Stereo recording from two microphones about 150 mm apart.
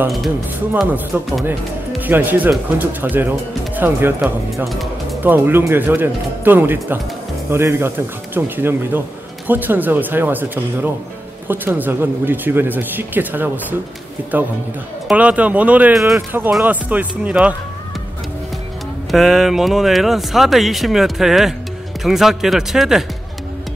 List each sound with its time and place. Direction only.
1.1 s speech: 10° right (ahead or behind)
15.0 s speech: 10° right (ahead or behind)
19.0 s speech: centre (ahead or behind)